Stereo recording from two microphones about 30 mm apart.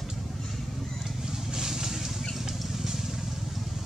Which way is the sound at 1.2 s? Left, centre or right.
Centre.